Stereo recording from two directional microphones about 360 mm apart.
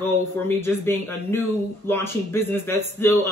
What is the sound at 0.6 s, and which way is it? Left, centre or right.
Speech, centre.